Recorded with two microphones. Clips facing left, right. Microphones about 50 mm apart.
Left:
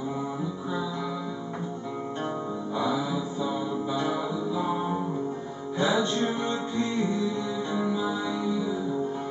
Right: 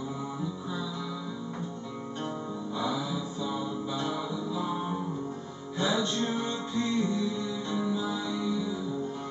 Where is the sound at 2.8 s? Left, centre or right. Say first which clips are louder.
Left 4 dB; centre.